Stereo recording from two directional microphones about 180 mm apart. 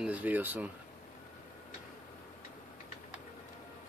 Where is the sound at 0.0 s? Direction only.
10° right (ahead or behind).